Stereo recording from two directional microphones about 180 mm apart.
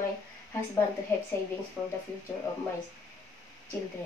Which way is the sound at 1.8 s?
5° right (ahead or behind).